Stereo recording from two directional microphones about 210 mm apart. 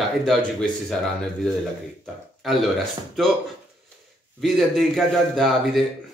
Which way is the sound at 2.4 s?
Centre (ahead or behind).